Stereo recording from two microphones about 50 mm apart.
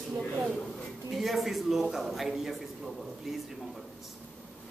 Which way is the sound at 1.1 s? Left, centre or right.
Centre.